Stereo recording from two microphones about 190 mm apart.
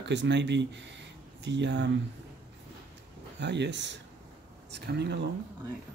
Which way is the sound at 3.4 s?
65° right (ahead or behind).